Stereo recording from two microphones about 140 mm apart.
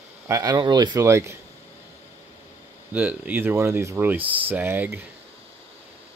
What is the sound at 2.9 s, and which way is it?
Speech, 10° right (ahead or behind).